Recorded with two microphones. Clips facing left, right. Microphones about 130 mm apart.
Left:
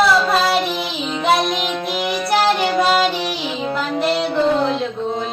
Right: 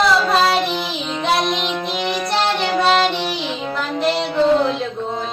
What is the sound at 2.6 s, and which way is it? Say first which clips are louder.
Music: even; 5° left (ahead or behind).